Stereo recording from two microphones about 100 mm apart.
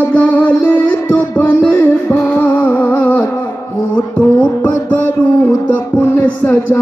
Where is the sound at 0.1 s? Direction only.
15° left (ahead or behind).